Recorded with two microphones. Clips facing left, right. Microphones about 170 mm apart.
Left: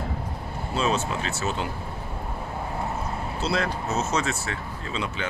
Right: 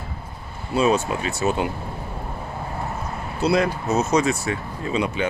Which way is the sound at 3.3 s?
15° right (ahead or behind).